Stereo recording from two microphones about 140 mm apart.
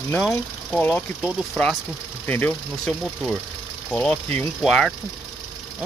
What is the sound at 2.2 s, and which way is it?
Speech, 15° left (ahead or behind).